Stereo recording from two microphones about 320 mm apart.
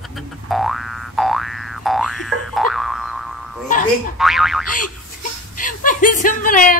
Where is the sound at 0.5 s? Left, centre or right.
Centre.